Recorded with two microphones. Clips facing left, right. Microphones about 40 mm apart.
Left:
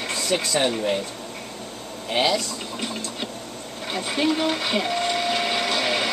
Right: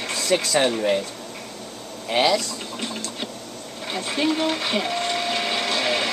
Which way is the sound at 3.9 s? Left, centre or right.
Centre.